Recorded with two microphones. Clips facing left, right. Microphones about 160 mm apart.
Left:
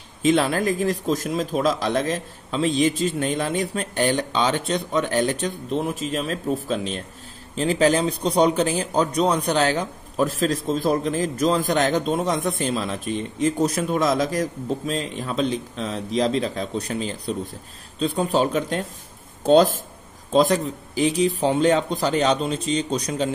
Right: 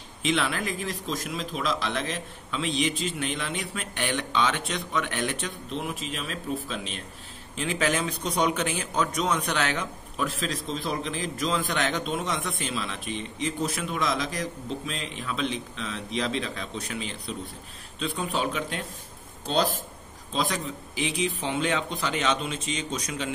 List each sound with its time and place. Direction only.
0.2 s speech: 40° left (ahead or behind)